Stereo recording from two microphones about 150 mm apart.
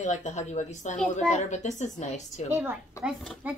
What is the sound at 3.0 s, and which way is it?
Speech, 5° right (ahead or behind).